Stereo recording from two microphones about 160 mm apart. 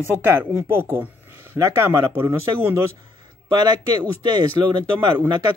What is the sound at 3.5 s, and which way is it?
Speech, 25° right (ahead or behind).